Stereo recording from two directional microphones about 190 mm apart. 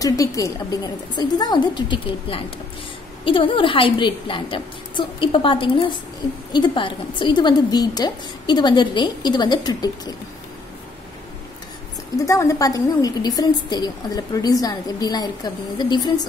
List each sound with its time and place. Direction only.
0.0 s a woman's voice: 15° left (ahead or behind)
12.2 s a woman's voice: 15° left (ahead or behind)